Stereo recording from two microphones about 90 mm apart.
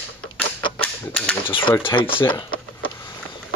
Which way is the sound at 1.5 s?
75° left (ahead or behind).